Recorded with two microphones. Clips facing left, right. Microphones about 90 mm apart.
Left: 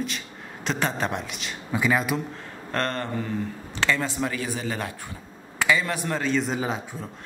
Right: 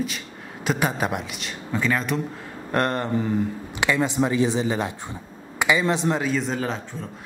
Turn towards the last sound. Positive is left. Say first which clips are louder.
# even
turn(degrees=10)  # may be behind; listen again after turning